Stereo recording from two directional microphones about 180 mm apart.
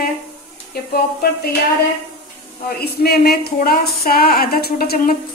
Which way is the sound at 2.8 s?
60° left (ahead or behind).